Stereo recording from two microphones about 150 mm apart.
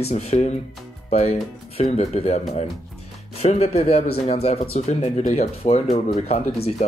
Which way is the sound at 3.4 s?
45° left (ahead or behind).